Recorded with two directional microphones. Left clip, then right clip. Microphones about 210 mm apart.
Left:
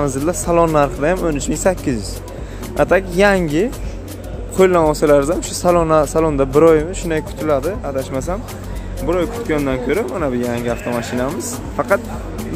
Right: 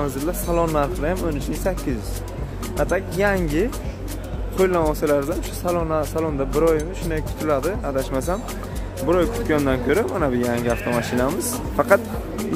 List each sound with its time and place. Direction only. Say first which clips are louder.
0.3 s speech: left 8 dB; 20° left (ahead or behind)
7.6 s speech: left 2 dB; centre (ahead or behind)